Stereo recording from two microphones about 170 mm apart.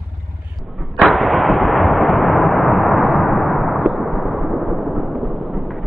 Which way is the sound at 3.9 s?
Centre (ahead or behind).